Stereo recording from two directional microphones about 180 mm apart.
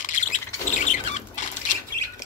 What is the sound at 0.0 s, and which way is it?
Bird, 45° left (ahead or behind).